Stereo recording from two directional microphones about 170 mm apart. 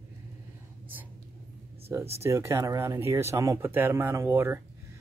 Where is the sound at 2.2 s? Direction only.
15° right (ahead or behind).